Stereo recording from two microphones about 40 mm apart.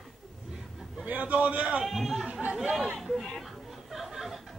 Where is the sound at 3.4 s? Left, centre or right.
Centre.